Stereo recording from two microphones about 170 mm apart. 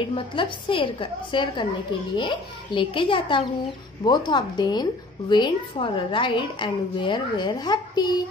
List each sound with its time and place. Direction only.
0.1 s a woman's voice: 30° left (ahead or behind)